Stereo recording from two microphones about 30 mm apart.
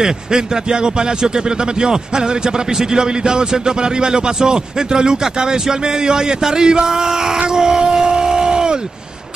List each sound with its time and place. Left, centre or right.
0.0 s a man's voice: right